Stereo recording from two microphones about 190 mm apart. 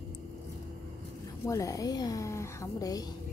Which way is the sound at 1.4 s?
15° left (ahead or behind).